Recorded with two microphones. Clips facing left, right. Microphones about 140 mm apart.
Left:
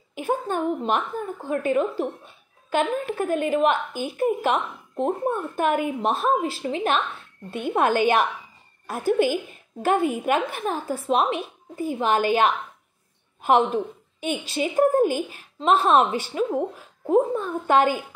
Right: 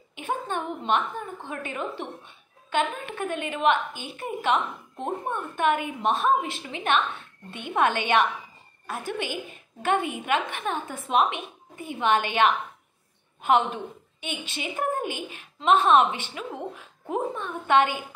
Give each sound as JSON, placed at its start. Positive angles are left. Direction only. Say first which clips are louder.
{"t": 0.1, "sound": "a woman's voice", "louder": "left 5 dB", "side_deg": 40}